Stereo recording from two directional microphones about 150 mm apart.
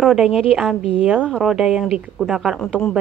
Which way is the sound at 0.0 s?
5° right (ahead or behind).